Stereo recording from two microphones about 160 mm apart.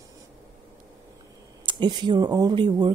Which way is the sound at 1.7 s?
30° right (ahead or behind).